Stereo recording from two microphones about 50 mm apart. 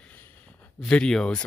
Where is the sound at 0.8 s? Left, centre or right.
Centre.